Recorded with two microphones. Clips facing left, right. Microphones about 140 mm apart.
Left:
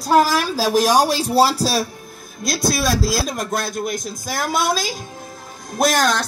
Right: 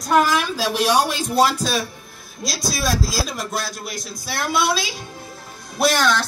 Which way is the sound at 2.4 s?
55° left (ahead or behind).